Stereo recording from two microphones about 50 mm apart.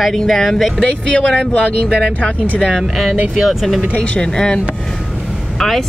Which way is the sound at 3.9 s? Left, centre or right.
Left.